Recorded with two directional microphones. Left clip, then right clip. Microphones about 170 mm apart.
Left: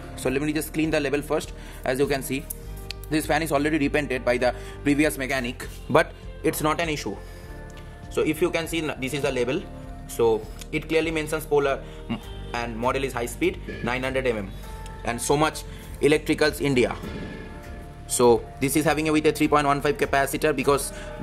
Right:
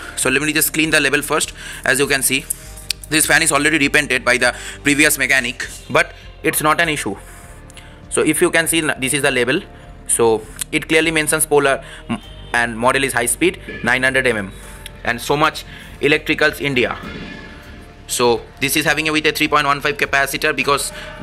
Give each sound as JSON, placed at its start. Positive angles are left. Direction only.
{"t": 0.1, "sound": "speech", "side_deg": 10}
{"t": 6.4, "sound": "speech", "side_deg": 10}
{"t": 6.7, "sound": "speech", "side_deg": -10}
{"t": 8.1, "sound": "speech", "side_deg": -10}
{"t": 15.0, "sound": "speech", "side_deg": 5}
{"t": 18.1, "sound": "speech", "side_deg": 20}